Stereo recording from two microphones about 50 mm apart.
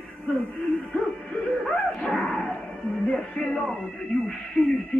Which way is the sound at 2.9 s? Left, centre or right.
Left.